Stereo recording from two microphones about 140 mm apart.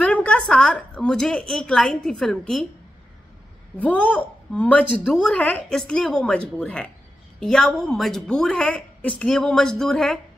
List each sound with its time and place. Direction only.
0.0 s a woman's voice: 10° left (ahead or behind)
3.7 s a woman's voice: 10° left (ahead or behind)